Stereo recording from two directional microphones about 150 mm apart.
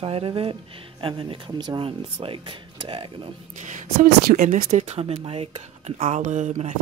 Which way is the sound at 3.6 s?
55° right (ahead or behind).